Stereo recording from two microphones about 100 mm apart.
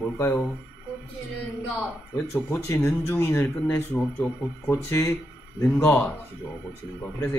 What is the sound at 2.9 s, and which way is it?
A man's voice, 20° left (ahead or behind).